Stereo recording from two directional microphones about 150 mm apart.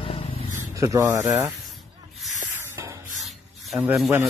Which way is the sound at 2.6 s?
20° right (ahead or behind).